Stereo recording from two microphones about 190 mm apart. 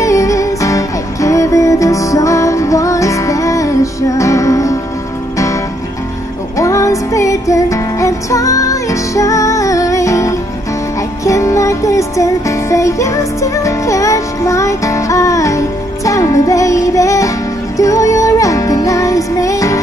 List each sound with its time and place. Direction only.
0.0 s music: 15° left (ahead or behind)
6.5 s music: 15° left (ahead or behind)